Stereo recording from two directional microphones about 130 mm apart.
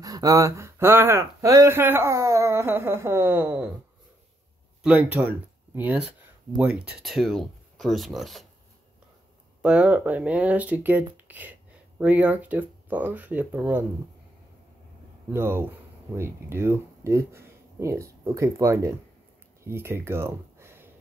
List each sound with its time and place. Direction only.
0.0 s speech: 25° right (ahead or behind)
4.8 s speech: 10° right (ahead or behind)
9.6 s speech: 10° right (ahead or behind)
15.3 s speech: 20° right (ahead or behind)
19.6 s a sound: 20° right (ahead or behind)